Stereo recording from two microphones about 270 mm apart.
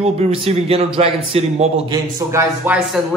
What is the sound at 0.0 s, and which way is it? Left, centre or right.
A man's voice, right.